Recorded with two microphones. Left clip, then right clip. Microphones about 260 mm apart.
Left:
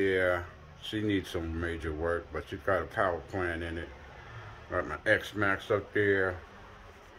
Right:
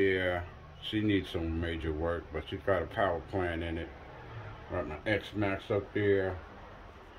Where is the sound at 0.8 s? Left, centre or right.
Centre.